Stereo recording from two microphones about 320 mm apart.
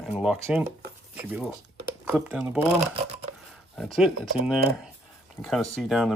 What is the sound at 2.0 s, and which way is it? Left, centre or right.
Speech, centre.